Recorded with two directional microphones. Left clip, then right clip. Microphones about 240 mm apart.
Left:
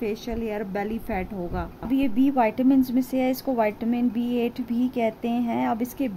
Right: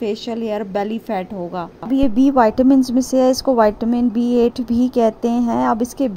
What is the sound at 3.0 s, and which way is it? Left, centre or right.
Speech, right.